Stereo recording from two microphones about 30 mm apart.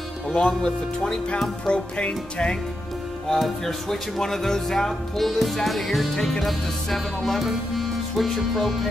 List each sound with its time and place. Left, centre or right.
0.4 s speech: left
1.7 s music: left
3.3 s music: centre